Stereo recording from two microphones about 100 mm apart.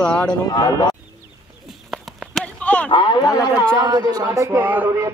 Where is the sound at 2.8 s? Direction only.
55° left (ahead or behind).